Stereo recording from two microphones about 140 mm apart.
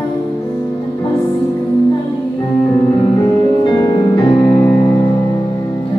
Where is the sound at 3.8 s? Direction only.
30° left (ahead or behind).